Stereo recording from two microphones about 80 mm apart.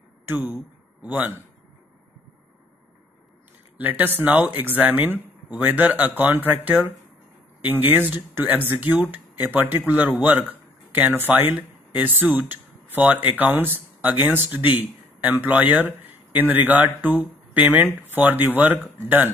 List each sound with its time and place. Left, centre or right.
0.2 s speech: right
3.7 s speech: right